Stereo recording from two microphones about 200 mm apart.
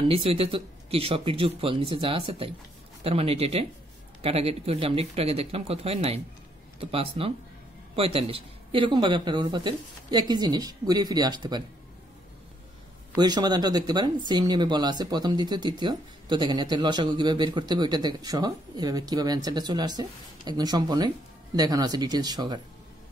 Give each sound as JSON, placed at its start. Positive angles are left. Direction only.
{"t": 0.1, "sound": "speech", "side_deg": -30}
{"t": 13.2, "sound": "speech", "side_deg": -20}